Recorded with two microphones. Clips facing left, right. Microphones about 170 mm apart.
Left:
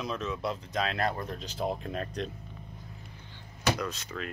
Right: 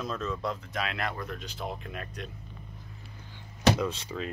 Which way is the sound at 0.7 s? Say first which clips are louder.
Left 3 dB; 35° left (ahead or behind).